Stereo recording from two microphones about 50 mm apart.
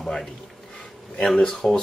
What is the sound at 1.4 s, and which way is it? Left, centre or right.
Speech, centre.